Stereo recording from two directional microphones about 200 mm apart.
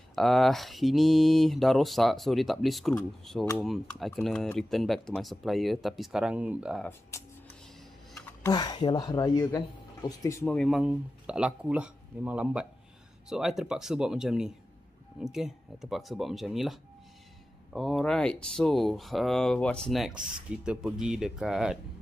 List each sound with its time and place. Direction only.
0.1 s speech: centre (ahead or behind)
6.8 s speech: 15° left (ahead or behind)
8.4 s speech: 20° left (ahead or behind)
10.4 s speech: centre (ahead or behind)